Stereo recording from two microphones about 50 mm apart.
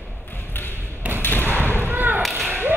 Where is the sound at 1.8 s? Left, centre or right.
Right.